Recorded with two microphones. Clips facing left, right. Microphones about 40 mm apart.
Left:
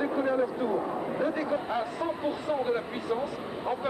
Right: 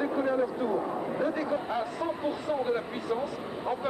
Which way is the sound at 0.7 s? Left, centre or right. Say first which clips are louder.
Even; centre.